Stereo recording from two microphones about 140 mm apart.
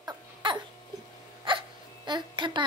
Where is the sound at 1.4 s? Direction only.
35° right (ahead or behind).